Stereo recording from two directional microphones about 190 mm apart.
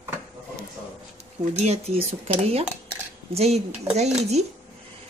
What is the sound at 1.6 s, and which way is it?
Speech, 35° right (ahead or behind).